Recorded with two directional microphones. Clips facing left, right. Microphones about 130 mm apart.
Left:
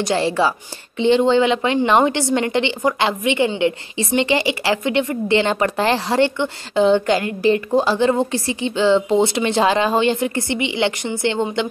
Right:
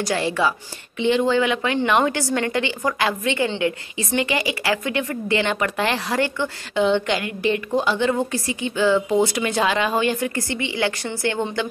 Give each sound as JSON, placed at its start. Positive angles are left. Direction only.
{"t": 0.0, "sound": "a woman's voice", "side_deg": 30}
{"t": 6.7, "sound": "a woman's voice", "side_deg": 35}